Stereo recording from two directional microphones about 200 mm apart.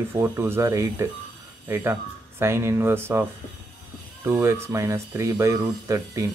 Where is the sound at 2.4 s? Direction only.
15° right (ahead or behind).